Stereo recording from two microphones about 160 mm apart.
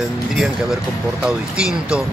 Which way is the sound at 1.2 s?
5° right (ahead or behind).